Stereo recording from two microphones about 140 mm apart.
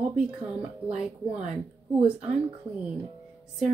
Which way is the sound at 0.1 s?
10° right (ahead or behind).